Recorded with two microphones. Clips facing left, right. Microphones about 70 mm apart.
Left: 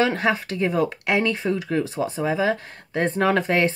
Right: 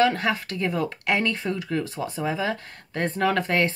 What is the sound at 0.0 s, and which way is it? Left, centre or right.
Speech, left.